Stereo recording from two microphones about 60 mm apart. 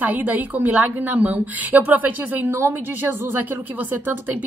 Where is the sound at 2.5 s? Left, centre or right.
Right.